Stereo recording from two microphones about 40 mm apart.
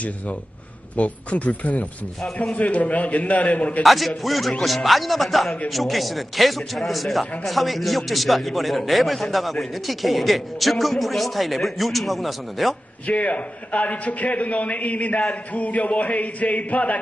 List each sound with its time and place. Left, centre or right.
0.9 s a man's voice: left
3.8 s a man's voice: centre
13.0 s a man's voice: left